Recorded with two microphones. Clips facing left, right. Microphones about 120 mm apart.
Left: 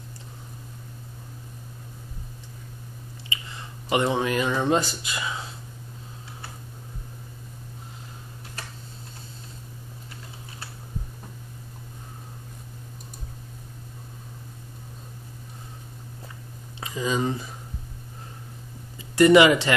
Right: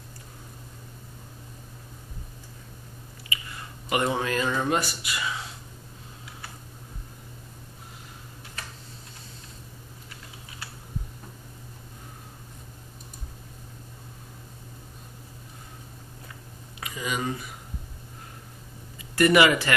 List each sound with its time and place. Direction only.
3.3 s a sound: 25° left (ahead or behind)
3.9 s speech: 20° left (ahead or behind)
16.8 s speech: 30° left (ahead or behind)
19.1 s speech: 20° left (ahead or behind)